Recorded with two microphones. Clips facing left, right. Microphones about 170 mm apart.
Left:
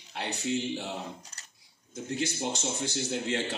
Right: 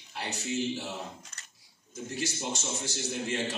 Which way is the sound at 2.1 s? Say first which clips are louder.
Left 3 dB; 60° left (ahead or behind).